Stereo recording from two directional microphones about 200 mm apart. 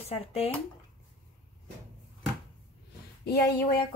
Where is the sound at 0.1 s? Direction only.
30° left (ahead or behind).